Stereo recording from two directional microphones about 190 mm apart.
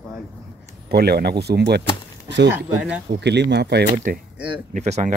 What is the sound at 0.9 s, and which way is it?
Speech, 55° right (ahead or behind).